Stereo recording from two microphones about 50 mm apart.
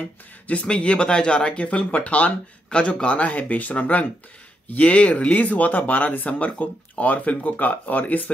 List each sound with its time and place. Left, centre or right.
0.5 s speech: left